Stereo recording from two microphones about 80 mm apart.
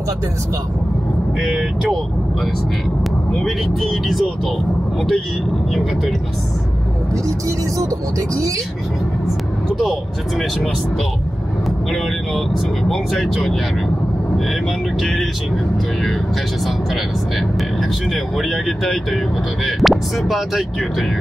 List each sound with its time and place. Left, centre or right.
3.4 s speech: centre
7.2 s speech: right
11.9 s speech: centre
15.0 s speech: centre
18.1 s speech: centre